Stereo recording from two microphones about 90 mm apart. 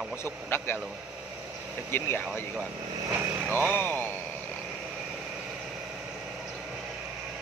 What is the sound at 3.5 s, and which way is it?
Speech, 25° left (ahead or behind).